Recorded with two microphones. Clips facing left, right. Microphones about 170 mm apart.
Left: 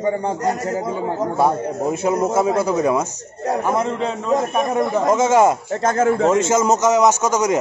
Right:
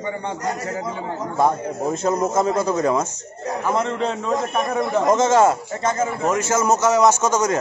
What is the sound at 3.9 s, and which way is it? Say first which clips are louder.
Speech: left 2 dB; 5° left (ahead or behind).